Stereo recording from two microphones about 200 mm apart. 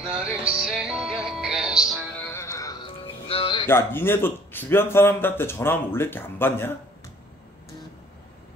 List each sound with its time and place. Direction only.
0.0 s music: 5° right (ahead or behind)
2.3 s music: 15° left (ahead or behind)
3.6 s a man's voice: 10° left (ahead or behind)